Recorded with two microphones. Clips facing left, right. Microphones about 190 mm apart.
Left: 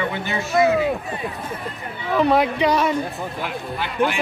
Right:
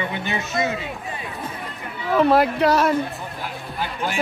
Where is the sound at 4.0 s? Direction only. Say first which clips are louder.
Left 8 dB; 55° left (ahead or behind).